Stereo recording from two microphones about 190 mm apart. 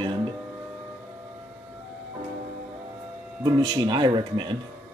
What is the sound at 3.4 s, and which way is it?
Speech, 20° right (ahead or behind).